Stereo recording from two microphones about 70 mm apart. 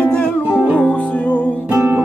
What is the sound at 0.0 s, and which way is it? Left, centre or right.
Music, centre.